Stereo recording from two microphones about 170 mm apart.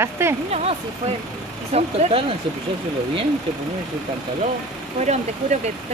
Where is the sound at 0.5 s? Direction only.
40° right (ahead or behind).